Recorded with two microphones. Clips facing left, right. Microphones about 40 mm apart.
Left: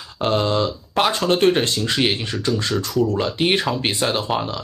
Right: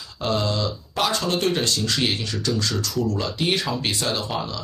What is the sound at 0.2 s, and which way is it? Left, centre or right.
Speech, left.